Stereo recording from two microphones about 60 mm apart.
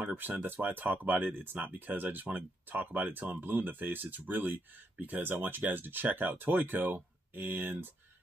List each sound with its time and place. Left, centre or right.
0.0 s speech: right